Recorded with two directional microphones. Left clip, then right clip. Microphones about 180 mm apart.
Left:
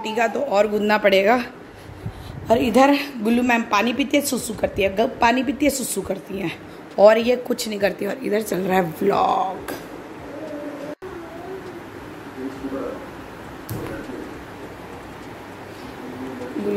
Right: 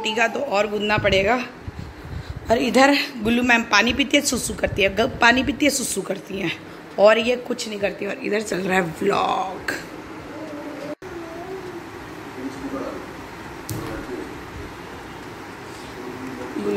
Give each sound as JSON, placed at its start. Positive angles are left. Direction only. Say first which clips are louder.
{"t": 0.0, "sound": "a woman's voice", "louder": "even", "side_deg": 10}
{"t": 0.7, "sound": "speech", "louder": "left 2 dB", "side_deg": 25}
{"t": 2.4, "sound": "a woman's voice", "louder": "left 1 dB", "side_deg": 15}
{"t": 7.5, "sound": "a woman's voice", "louder": "left 3 dB", "side_deg": 30}